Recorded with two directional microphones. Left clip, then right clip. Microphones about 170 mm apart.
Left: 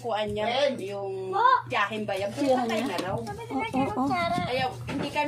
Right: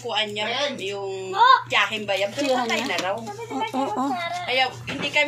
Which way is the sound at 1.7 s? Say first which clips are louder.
Right 6 dB; 35° left (ahead or behind).